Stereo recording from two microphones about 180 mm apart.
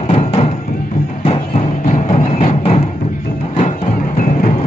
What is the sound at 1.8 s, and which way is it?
Music, 40° left (ahead or behind).